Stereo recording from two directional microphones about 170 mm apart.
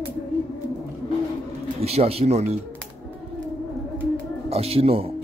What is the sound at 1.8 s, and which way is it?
Speech, 35° right (ahead or behind).